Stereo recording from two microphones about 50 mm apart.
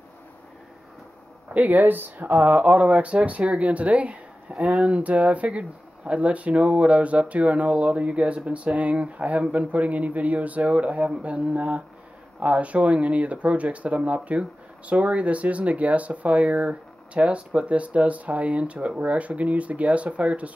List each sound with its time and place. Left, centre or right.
1.5 s speech: right